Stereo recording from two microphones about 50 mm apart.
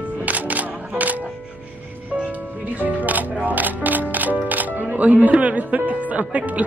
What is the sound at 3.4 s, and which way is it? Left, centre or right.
Music, right.